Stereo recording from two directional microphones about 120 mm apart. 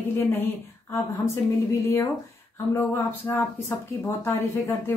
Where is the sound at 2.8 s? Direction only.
15° left (ahead or behind).